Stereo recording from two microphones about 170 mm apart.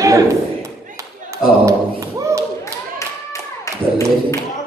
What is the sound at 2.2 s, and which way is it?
Clapping, 15° right (ahead or behind).